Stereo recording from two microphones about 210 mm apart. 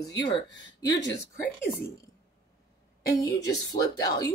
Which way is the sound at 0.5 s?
60° left (ahead or behind).